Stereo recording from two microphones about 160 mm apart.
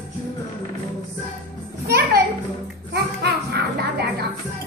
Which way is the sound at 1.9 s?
80° right.